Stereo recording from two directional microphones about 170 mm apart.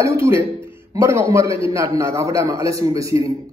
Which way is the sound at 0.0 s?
15° right (ahead or behind).